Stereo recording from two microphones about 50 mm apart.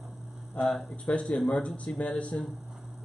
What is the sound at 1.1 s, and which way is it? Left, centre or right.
Speech, left.